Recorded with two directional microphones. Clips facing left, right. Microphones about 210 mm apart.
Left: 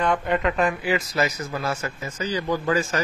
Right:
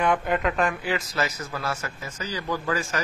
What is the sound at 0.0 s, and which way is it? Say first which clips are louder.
A man's voice: left 1 dB; 5° right (ahead or behind).